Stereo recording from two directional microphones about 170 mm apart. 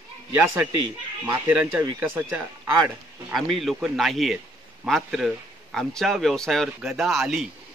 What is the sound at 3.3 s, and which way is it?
Speech, centre (ahead or behind).